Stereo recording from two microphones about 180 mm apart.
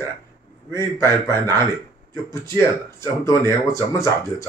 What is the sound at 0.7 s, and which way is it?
Speech, 15° left (ahead or behind).